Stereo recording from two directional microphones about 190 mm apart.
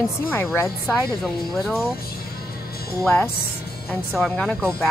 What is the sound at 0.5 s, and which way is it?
Speech, 15° left (ahead or behind).